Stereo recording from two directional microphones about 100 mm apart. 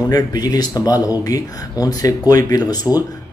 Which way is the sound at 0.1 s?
40° left (ahead or behind).